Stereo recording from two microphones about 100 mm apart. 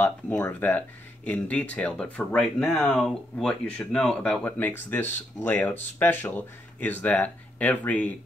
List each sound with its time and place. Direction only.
0.0 s speech: 15° left (ahead or behind)